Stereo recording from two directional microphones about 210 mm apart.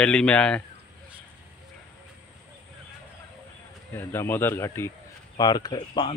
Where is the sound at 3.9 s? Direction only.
10° left (ahead or behind).